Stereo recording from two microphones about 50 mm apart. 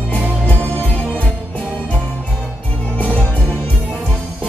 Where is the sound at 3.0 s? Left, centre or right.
Right.